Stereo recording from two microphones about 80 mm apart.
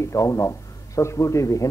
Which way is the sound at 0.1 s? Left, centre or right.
Left.